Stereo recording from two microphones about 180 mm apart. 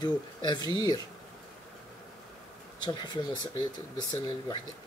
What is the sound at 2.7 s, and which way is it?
Speech, 25° left (ahead or behind).